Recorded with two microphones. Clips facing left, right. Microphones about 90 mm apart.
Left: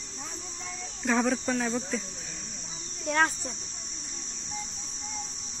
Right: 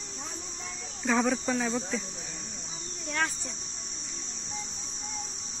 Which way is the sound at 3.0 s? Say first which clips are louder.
Left 6 dB; 45° left (ahead or behind).